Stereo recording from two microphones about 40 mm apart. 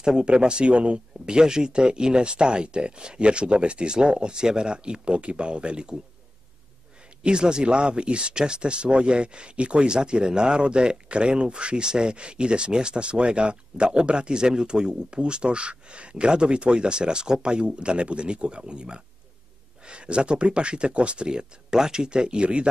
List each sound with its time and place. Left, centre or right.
0.0 s speech: right
7.2 s speech: right